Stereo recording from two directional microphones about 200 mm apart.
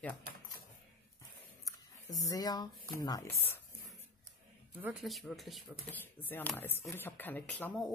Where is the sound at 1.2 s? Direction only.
15° left (ahead or behind).